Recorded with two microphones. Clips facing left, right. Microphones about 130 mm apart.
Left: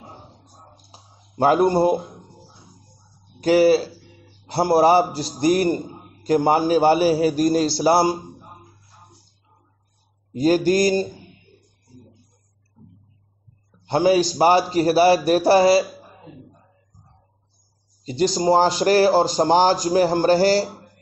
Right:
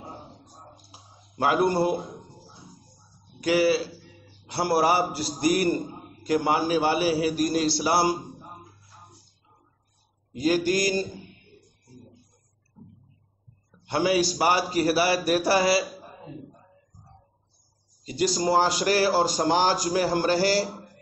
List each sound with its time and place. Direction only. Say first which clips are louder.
0.9 s a sound: left 7 dB; 35° left (ahead or behind)
3.4 s a man's voice: left 6 dB; 35° left (ahead or behind)
6.2 s a man's voice: left 6 dB; 35° left (ahead or behind)
10.3 s a man's voice: left 6 dB; 30° left (ahead or behind)
13.8 s a man's voice: left 6 dB; 25° left (ahead or behind)
18.0 s a man's voice: left 5 dB; 25° left (ahead or behind)